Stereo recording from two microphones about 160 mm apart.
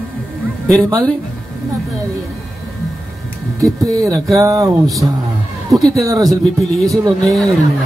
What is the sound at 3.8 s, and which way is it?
Speech, 25° right (ahead or behind).